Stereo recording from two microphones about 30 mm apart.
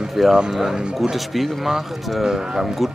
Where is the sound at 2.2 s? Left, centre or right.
Right.